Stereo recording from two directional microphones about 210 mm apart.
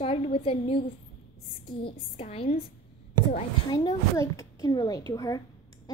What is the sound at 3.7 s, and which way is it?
A woman's voice, 20° left (ahead or behind).